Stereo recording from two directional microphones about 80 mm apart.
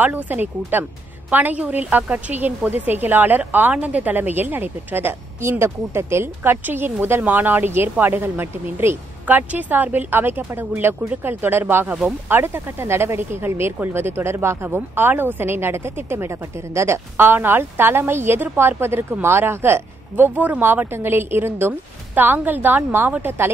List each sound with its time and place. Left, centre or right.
0.0 s a woman's voice: right